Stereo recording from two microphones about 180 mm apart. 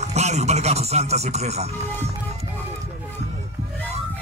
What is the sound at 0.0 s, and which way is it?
Speech, 40° right (ahead or behind).